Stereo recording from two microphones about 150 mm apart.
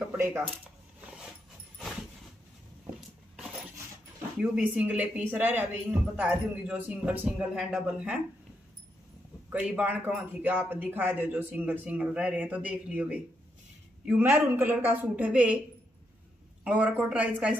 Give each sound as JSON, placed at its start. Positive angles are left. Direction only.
{"t": 0.1, "sound": "speech", "side_deg": -15}
{"t": 4.4, "sound": "speech", "side_deg": -10}
{"t": 9.5, "sound": "speech", "side_deg": -10}
{"t": 16.6, "sound": "speech", "side_deg": -10}